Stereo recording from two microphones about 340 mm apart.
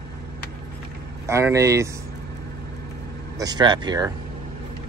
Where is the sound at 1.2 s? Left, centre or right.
Centre.